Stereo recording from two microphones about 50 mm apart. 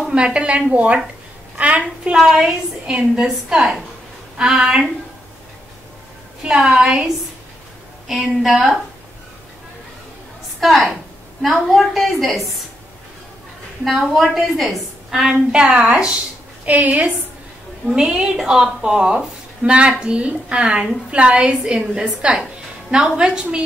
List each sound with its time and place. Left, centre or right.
0.1 s a woman's voice: right
2.1 s a woman's voice: centre
2.9 s a woman's voice: centre
3.5 s a woman's voice: centre
4.4 s a woman's voice: centre
6.6 s a woman's voice: centre
8.1 s a woman's voice: centre
10.6 s a woman's voice: centre
13.8 s a woman's voice: centre
15.0 s a woman's voice: centre
15.6 s a woman's voice: right
17.9 s a woman's voice: centre